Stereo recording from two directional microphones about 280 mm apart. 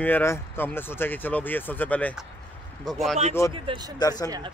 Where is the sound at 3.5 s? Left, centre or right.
Centre.